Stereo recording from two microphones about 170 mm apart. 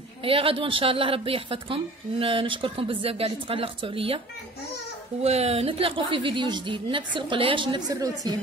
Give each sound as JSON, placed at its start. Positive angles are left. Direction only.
{"t": 0.2, "sound": "a woman's voice", "side_deg": -30}
{"t": 5.2, "sound": "a woman's voice", "side_deg": -40}